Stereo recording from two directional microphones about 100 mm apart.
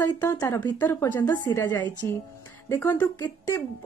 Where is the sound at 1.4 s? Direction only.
35° left (ahead or behind).